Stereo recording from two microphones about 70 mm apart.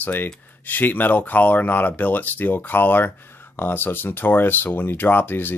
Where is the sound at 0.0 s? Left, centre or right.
Left.